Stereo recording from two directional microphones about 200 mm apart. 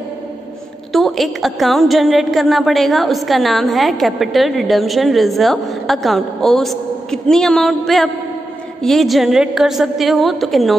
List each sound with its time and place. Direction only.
0.9 s a woman's voice: centre (ahead or behind)